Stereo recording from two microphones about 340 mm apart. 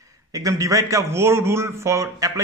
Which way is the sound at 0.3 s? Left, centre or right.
Centre.